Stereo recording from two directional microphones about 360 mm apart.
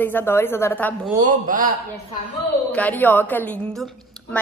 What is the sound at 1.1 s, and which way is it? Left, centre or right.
Speech, centre.